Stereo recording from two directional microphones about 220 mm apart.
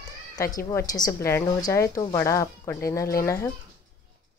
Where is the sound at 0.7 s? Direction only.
15° left (ahead or behind).